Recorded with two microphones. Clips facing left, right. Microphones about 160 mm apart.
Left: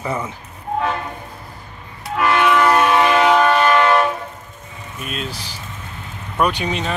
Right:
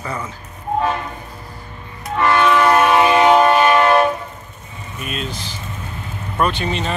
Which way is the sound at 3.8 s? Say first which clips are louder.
Right 2 dB; 30° right (ahead or behind).